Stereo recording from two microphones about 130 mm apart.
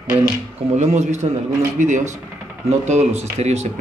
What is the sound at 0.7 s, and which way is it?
Speech, 60° right (ahead or behind).